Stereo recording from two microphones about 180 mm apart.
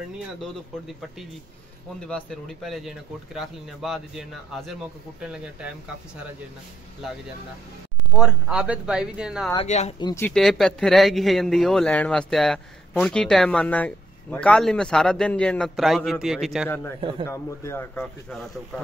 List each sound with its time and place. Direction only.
2.0 s speech: 5° left (ahead or behind)
8.2 s speech: centre (ahead or behind)
9.7 s speech: 40° left (ahead or behind)
9.9 s speech: 20° left (ahead or behind)
10.2 s speech: centre (ahead or behind)
16.6 s speech: 10° left (ahead or behind)